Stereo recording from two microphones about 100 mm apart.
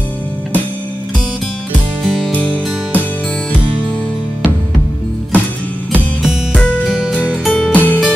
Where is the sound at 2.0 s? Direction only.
Centre (ahead or behind).